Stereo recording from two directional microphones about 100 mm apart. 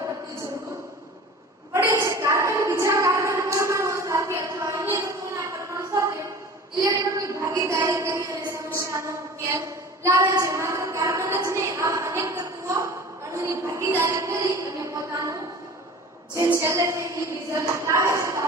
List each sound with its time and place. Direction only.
1.7 s a sound: 30° right (ahead or behind)
8.7 s child singing: 30° right (ahead or behind)
16.5 s a woman's voice: 30° right (ahead or behind)